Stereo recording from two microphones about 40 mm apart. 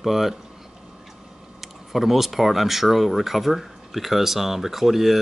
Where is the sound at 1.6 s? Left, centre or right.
Centre.